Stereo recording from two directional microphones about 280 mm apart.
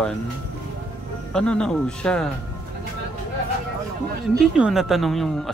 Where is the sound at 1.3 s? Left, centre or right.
Centre.